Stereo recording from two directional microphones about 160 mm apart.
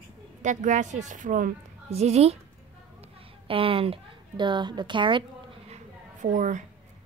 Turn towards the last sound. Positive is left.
turn(degrees=-55)  # may be behind; listen again after turning